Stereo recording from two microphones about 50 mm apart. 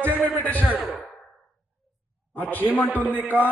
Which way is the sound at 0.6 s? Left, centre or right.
Right.